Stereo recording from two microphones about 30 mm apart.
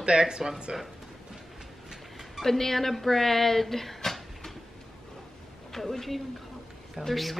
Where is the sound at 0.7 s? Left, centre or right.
Centre.